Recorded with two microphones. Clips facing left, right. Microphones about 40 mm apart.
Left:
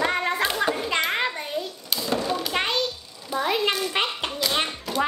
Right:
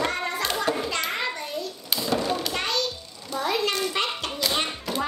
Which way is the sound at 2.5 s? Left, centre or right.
Left.